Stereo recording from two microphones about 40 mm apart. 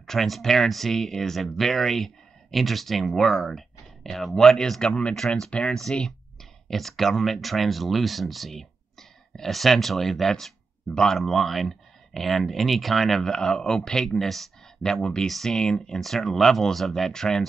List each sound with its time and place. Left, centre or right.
0.0 s speech: centre
4.8 s speech: left
5.7 s speech: centre
10.4 s a sound: centre
11.1 s speech: centre
14.9 s speech: centre
15.2 s speech: centre
15.5 s speech: centre